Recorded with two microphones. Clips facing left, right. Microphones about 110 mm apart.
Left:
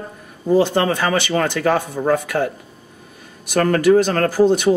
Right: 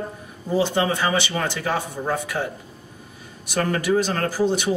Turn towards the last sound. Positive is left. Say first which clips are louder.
# left 7 dB
turn(degrees=55)  # may be behind; listen again after turning